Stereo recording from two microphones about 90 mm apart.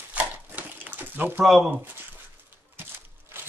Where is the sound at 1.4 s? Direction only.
Centre (ahead or behind).